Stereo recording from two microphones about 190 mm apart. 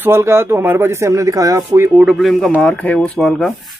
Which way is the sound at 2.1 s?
Centre (ahead or behind).